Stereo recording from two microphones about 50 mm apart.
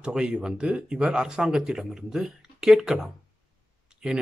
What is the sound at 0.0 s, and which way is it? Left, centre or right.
Speech, centre.